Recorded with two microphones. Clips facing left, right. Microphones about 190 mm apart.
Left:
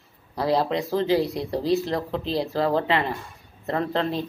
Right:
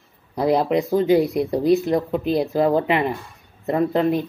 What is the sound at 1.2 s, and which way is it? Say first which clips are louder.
Speech: right 6 dB; 55° right (ahead or behind).